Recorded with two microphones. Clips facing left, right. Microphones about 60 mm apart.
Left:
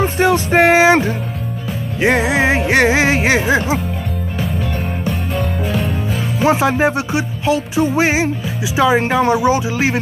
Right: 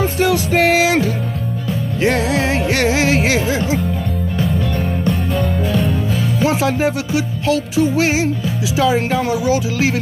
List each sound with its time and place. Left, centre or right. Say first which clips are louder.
0.0 s music: left 2 dB; left
6.4 s music: left 4 dB; left
9.2 s speech: left 3 dB; left